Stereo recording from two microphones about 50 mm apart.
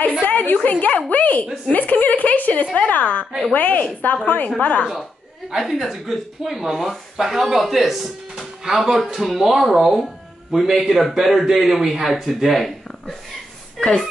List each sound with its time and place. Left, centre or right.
0.2 s a sound: left
0.7 s a woman's voice: left
5.5 s speech: centre
13.7 s speech: centre